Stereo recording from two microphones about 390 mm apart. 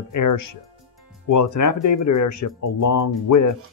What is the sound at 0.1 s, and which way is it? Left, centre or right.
Speech, left.